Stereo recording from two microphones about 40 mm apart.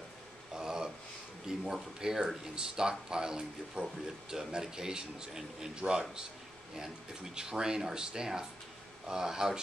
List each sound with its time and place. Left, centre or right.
0.6 s a sound: centre
1.6 s speech: centre
7.3 s speech: centre